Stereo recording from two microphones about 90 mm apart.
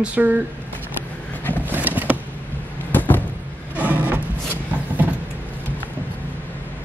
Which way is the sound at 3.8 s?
20° right (ahead or behind).